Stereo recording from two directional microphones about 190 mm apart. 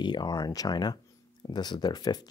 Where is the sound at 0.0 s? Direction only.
20° left (ahead or behind).